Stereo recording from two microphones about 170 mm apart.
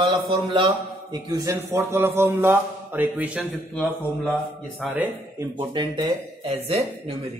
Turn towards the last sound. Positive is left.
turn(degrees=-35)  # may be behind; listen again after turning